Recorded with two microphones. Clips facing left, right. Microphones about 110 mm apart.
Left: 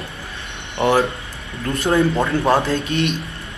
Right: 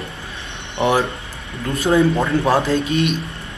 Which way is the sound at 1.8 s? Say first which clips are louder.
Right 2 dB; centre (ahead or behind).